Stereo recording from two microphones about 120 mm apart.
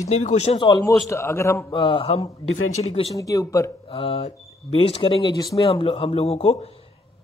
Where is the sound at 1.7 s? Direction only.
40° left (ahead or behind); by 3.2 s 60° left (ahead or behind).